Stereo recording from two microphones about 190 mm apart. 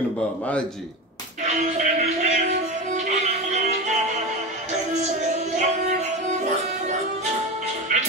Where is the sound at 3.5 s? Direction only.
40° right (ahead or behind).